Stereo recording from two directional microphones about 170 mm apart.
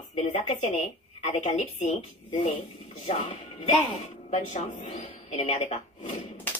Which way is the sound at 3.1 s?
45° left (ahead or behind).